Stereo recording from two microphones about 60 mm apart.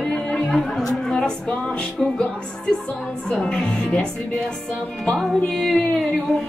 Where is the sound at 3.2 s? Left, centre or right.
Centre.